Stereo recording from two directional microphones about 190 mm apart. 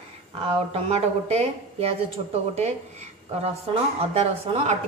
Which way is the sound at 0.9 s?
35° right (ahead or behind).